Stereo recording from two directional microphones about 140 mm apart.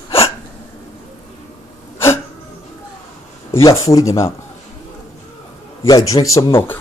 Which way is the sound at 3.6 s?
25° left (ahead or behind).